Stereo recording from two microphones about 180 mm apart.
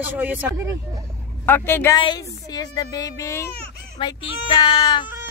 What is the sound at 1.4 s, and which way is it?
Speech, 10° left (ahead or behind).